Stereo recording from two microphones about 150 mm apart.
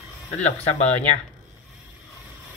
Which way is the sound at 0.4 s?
50° left (ahead or behind).